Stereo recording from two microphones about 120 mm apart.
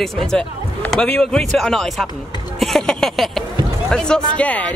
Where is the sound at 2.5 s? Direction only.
5° left (ahead or behind).